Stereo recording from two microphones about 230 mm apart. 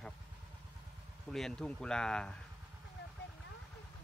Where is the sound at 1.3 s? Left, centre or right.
Centre.